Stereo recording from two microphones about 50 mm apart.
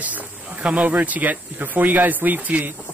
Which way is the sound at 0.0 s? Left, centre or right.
Right.